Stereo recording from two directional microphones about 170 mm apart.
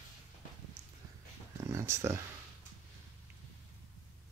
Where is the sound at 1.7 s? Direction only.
15° right (ahead or behind).